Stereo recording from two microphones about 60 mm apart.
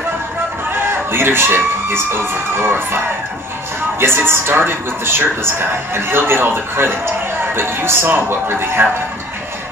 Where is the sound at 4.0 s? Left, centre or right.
Right.